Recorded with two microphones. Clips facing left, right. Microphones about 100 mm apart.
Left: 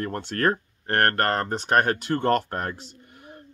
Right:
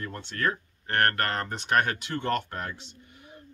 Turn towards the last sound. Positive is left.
turn(degrees=50)  # may be behind; listen again after turning